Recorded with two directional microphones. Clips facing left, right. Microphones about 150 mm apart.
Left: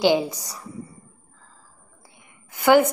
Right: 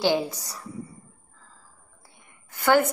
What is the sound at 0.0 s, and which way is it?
Speech, 15° left (ahead or behind).